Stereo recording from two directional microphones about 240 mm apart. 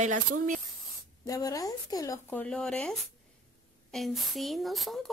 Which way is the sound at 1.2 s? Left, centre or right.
Centre.